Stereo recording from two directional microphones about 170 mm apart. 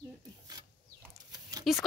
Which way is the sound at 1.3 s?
20° right (ahead or behind).